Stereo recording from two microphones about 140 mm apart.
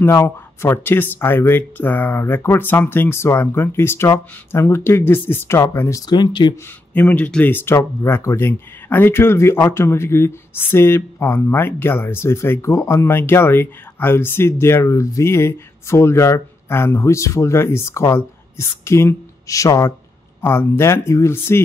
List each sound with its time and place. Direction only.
0.0 s speech: 20° left (ahead or behind)
6.5 s speech: 15° left (ahead or behind)